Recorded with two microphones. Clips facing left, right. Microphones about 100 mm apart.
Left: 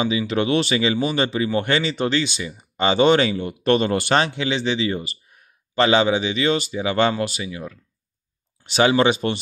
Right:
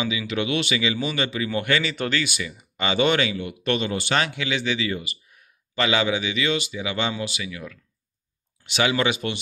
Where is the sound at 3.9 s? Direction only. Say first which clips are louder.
Left 6 dB; 55° left (ahead or behind).